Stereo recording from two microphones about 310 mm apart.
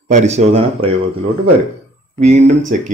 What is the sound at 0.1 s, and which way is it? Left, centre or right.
Speech, right.